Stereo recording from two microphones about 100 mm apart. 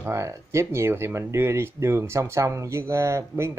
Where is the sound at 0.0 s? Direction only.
30° right (ahead or behind).